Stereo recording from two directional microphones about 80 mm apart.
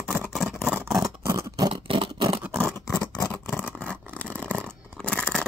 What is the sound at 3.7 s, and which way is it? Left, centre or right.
Toothbrush, centre.